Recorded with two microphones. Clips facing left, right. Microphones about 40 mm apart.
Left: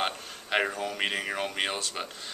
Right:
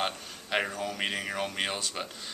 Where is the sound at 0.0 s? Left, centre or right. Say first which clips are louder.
Left 1 dB; centre.